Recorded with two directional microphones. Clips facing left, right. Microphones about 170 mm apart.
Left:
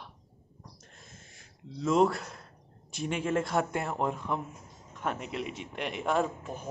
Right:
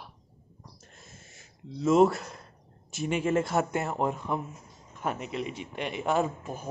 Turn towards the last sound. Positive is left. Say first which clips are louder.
# right 1 dB
turn(degrees=-5)  # may be behind; listen again after turning